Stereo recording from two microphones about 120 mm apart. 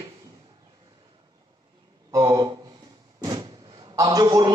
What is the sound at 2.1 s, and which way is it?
A man's voice, 30° right (ahead or behind).